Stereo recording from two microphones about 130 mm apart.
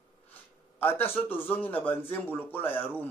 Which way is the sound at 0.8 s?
15° left (ahead or behind).